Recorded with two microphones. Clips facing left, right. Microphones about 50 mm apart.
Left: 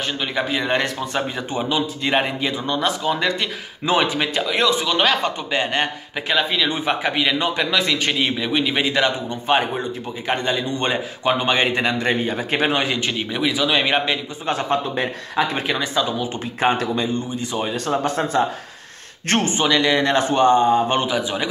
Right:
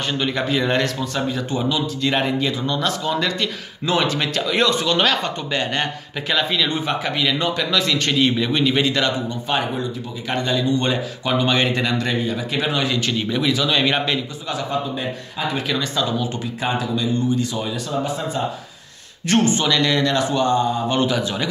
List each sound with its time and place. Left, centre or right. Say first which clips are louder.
0.2 s speech: right 2 dB; centre
1.1 s speech: right 1 dB; left; by 6.8 s centre
6.9 s speech: left 1 dB; left
9.6 s a man's voice: left 1 dB; left
12.2 s speech: left 2 dB; left; by 14.2 s centre
14.5 s a man's voice: left 4 dB; left
15.7 s speech: left 1 dB; centre
16.9 s speech: right 3 dB; left
18.0 s speech: left 4 dB; left
19.2 s a man's voice: right 1 dB; left; by 20.1 s centre
20.1 s speech: left 3 dB; left
21.1 s speech: even; centre